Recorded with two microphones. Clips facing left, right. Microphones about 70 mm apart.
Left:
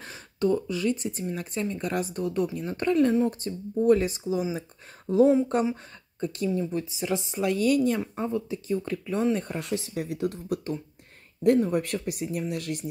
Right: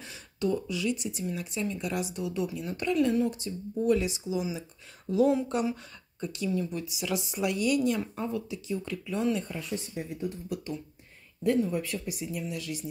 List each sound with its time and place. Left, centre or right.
0.0 s speech: left
9.4 s speech: left
10.5 s speech: left